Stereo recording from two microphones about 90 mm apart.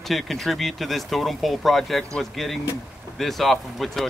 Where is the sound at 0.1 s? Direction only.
Centre (ahead or behind).